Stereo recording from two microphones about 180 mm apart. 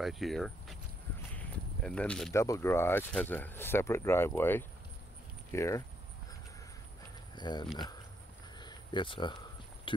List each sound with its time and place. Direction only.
0.0 s speech: centre (ahead or behind)
1.3 s a sound: 5° left (ahead or behind)
2.3 s speech: 15° left (ahead or behind)
7.3 s speech: 25° left (ahead or behind)
8.5 s cricket: 25° left (ahead or behind)
9.9 s speech: 30° left (ahead or behind)